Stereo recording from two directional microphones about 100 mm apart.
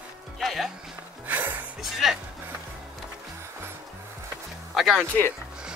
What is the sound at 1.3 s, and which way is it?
Music, 20° right (ahead or behind).